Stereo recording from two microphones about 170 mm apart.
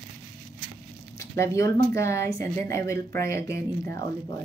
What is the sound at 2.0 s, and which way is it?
A woman's voice, 15° left (ahead or behind).